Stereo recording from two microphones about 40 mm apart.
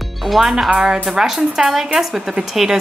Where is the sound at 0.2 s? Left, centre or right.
Centre.